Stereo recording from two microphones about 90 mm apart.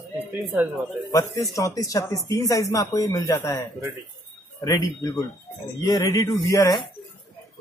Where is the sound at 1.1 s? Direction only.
35° left (ahead or behind).